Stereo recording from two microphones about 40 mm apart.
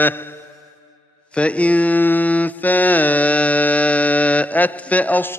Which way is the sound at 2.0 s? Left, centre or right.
Left.